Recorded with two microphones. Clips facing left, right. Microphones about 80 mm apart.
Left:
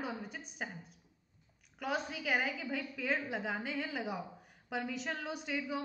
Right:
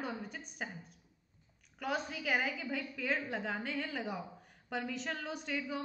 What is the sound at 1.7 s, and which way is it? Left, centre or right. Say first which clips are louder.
A woman's voice: even; centre.